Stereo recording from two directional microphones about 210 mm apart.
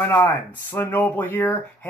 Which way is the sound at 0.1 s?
10° left (ahead or behind).